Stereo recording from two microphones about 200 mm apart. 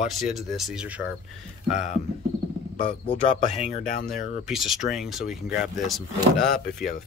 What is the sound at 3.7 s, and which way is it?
Speech, 40° left (ahead or behind).